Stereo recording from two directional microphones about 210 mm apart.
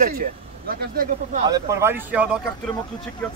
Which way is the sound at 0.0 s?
45° right (ahead or behind).